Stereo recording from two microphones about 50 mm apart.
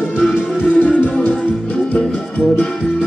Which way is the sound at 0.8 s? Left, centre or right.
Left.